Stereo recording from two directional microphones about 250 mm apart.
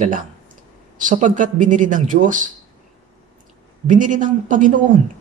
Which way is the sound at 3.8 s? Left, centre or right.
Right.